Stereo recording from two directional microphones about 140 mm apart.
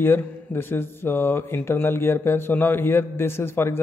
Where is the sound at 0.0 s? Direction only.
15° left (ahead or behind).